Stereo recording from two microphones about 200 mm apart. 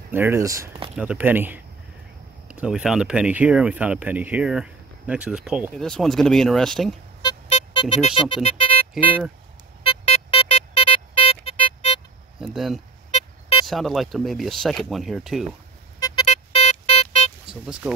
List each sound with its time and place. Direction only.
0.1 s speech: 10° right (ahead or behind)
0.9 s speech: 10° right (ahead or behind)
7.2 s music: 25° left (ahead or behind)
9.8 s music: 30° left (ahead or behind)
12.4 s a sound: centre (ahead or behind)
13.1 s vehicle: 30° left (ahead or behind)
13.7 s speech: centre (ahead or behind)
16.0 s music: 25° left (ahead or behind)
17.5 s speech: 5° right (ahead or behind)